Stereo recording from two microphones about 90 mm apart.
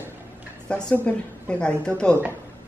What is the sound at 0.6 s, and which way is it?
A woman's voice, 15° left (ahead or behind).